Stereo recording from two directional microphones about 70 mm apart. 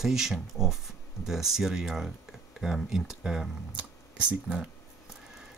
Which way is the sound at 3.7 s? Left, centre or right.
Centre.